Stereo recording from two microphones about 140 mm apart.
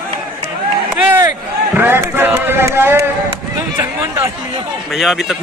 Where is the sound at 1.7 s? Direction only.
15° right (ahead or behind).